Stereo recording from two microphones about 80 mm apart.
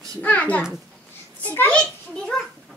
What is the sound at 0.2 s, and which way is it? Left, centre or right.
A child's voice, centre.